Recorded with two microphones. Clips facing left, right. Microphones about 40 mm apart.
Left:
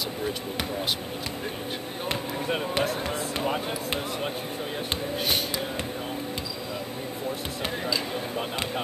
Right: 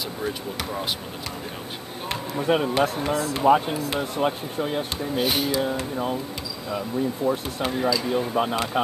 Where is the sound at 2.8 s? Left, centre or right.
Right.